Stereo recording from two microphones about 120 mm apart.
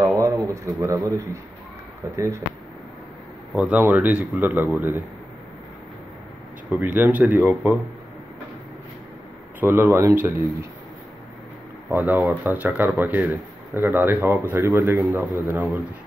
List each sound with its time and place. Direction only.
0.0 s a sound: 25° right (ahead or behind)
2.1 s a man's voice: 25° right (ahead or behind)
3.5 s speech: 10° right (ahead or behind)
6.7 s speech: 15° right (ahead or behind)
9.6 s a man's voice: 15° right (ahead or behind)
11.9 s speech: 15° right (ahead or behind)